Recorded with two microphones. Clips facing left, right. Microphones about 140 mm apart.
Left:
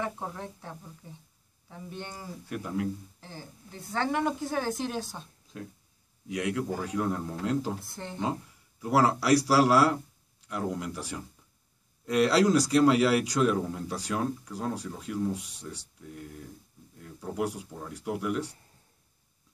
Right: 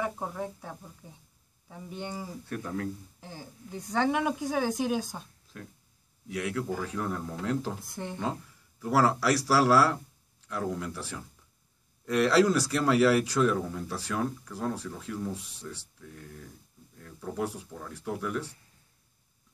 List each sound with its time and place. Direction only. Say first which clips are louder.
0.0 s a woman's voice: right 2 dB; 5° right (ahead or behind)
2.4 s speech: left 3 dB; 15° left (ahead or behind)
3.2 s a woman's voice: right 1 dB; 15° right (ahead or behind)
6.2 s speech: left 2 dB; 20° left (ahead or behind)
7.8 s a woman's voice: right 3 dB; 15° right (ahead or behind)
8.8 s speech: even; 15° left (ahead or behind)